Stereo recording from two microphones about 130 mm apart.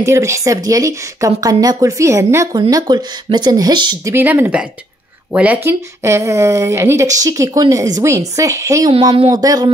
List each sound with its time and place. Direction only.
0.0 s speech: 20° right (ahead or behind)
4.0 s speech: 15° right (ahead or behind)